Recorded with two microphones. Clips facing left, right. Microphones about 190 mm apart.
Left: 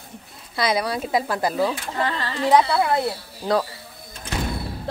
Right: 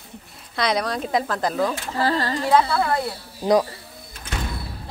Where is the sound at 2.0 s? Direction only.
40° right (ahead or behind).